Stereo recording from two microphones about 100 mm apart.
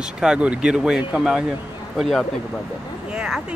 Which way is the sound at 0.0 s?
10° right (ahead or behind).